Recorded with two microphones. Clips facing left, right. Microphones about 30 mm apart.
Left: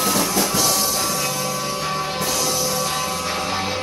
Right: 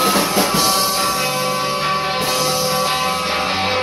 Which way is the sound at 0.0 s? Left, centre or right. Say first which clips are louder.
Right 4 dB; right.